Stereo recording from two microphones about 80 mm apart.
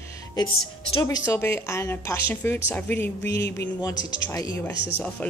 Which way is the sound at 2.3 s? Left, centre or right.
Left.